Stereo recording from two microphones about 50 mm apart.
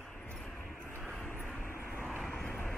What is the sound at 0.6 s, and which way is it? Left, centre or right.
Vehicle, left.